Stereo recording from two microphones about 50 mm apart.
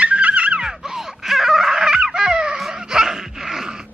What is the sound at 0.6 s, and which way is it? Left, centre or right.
Music, centre.